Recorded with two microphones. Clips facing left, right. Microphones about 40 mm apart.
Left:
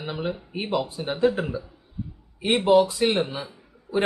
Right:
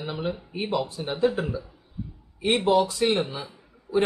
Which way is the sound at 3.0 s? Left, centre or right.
Left.